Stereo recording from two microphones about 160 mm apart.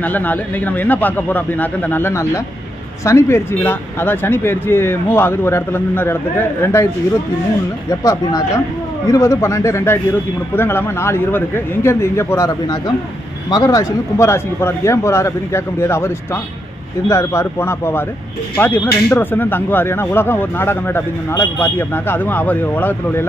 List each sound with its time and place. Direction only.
0.0 s speech: 10° left (ahead or behind)
8.0 s speech: 20° left (ahead or behind)
17.1 s speech: 15° left (ahead or behind)